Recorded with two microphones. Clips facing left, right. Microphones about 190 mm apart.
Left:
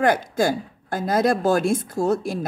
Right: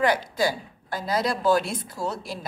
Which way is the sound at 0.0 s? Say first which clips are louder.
Left 3 dB; 50° left (ahead or behind).